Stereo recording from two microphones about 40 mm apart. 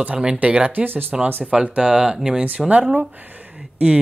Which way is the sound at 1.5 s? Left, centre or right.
Right.